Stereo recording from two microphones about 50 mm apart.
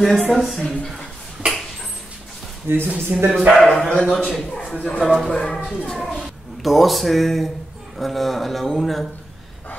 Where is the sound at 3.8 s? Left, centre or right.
Centre.